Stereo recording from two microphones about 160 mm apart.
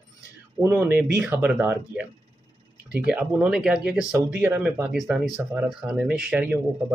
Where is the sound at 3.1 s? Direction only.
5° right (ahead or behind).